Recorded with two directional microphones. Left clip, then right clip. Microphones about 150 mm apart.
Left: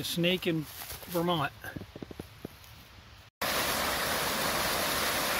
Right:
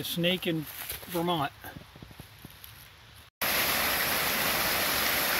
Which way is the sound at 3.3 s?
5° right (ahead or behind).